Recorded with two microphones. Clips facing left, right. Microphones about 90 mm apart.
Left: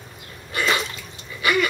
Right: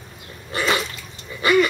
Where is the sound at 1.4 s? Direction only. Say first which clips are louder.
Right 4 dB; 35° right (ahead or behind).